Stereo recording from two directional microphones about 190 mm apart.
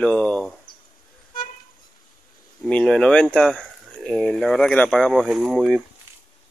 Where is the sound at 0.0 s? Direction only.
5° left (ahead or behind).